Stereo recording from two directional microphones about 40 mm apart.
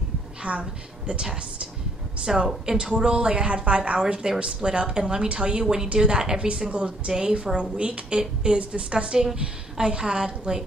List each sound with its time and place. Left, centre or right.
0.4 s a woman's voice: right
2.2 s a woman's voice: centre
4.0 s a woman's voice: centre
7.7 s a woman's voice: right